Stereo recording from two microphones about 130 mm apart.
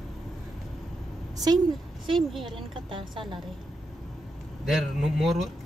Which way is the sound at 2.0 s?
Centre (ahead or behind).